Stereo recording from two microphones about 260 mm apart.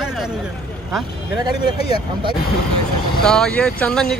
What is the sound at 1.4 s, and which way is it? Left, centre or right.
Speech, centre.